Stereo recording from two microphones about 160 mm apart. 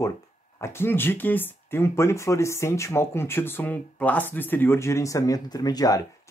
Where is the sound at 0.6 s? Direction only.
15° left (ahead or behind).